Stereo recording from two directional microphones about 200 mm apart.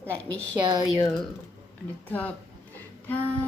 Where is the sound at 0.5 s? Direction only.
20° right (ahead or behind).